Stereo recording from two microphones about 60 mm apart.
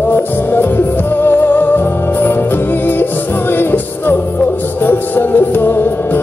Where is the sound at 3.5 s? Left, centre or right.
Left.